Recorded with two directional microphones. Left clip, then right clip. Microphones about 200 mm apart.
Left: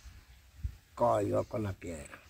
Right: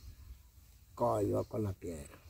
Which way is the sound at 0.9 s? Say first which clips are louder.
Left 4 dB; centre (ahead or behind).